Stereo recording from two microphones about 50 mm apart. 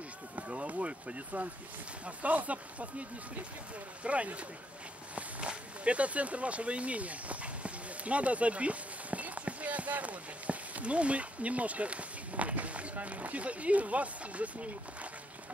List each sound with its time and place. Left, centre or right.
0.4 s speech: right